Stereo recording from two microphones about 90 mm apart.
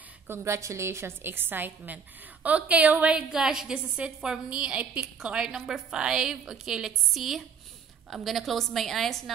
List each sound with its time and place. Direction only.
0.3 s a woman's voice: 30° right (ahead or behind); by 9.2 s centre (ahead or behind)